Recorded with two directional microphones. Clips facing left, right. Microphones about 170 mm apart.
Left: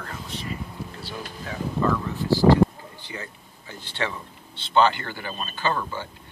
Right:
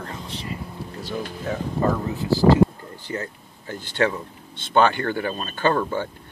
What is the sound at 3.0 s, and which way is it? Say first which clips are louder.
Speech: right 8 dB; 50° right (ahead or behind).